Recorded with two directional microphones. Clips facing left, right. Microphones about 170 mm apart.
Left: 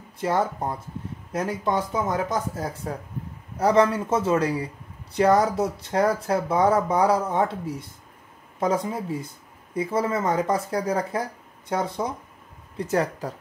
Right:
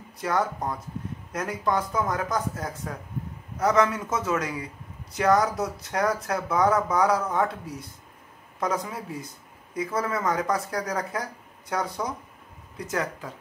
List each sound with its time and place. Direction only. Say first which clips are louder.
0.2 s a man's voice: left 2 dB; 25° left (ahead or behind)